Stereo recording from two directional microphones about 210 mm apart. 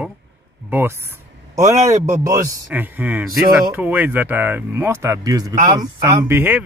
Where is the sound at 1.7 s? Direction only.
35° right (ahead or behind).